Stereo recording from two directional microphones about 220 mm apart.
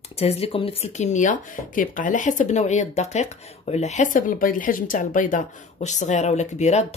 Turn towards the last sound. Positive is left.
turn(degrees=30)  # may be behind; listen again after turning